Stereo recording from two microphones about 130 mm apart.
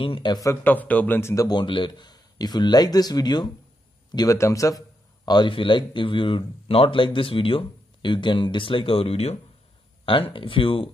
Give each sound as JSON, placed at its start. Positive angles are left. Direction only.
{"t": 0.0, "sound": "a man's voice", "side_deg": 40}
{"t": 0.7, "sound": "a man's voice", "side_deg": 10}